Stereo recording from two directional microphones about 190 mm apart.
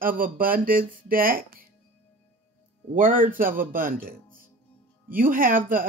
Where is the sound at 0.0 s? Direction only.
50° right (ahead or behind).